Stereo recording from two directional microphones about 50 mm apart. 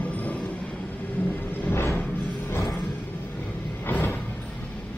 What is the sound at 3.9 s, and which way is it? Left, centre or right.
Vehicle, left.